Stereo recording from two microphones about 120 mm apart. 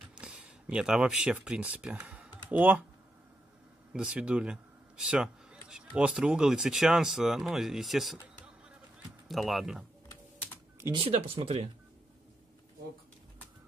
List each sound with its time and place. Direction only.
0.1 s speech: 10° right (ahead or behind)
3.9 s a man's voice: 5° right (ahead or behind)
9.3 s speech: centre (ahead or behind)
10.9 s speech: 50° right (ahead or behind)